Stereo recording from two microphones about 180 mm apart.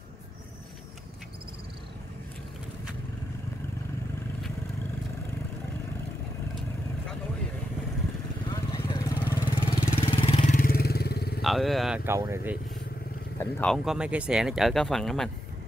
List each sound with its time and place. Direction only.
8.5 s vehicle: 25° left (ahead or behind)
9.3 s vehicle: 30° left (ahead or behind)
10.4 s vehicle: 50° left (ahead or behind)
11.4 s speech: centre (ahead or behind)
13.4 s speech: 10° left (ahead or behind)
13.8 s speech: 5° right (ahead or behind)